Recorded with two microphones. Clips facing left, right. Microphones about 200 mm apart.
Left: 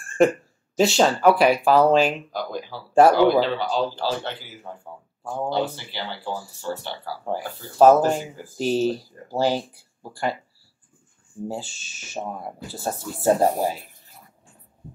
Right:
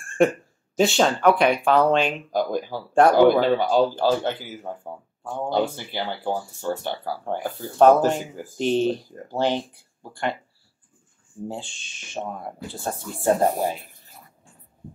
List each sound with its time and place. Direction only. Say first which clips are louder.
0.0 s a sound: left 1 dB; centre (ahead or behind)
0.7 s speech: left 1 dB; centre (ahead or behind)
2.3 s speech: right 6 dB; 50° right (ahead or behind)
2.9 s speech: left 2 dB; 5° left (ahead or behind)
3.2 s speech: right 2 dB; 50° right (ahead or behind)
7.2 s speech: left 1 dB; 5° left (ahead or behind)
11.4 s speech: left 2 dB; 5° left (ahead or behind)